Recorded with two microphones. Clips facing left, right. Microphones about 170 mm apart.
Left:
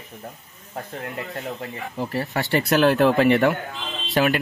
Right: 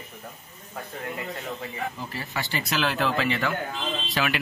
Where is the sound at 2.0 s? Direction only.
60° left (ahead or behind).